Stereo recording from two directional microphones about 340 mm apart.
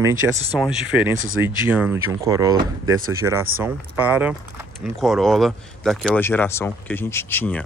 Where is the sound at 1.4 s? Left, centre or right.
Centre.